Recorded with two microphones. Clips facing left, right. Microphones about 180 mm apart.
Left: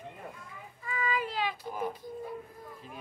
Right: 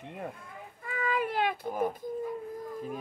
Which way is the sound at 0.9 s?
55° right (ahead or behind).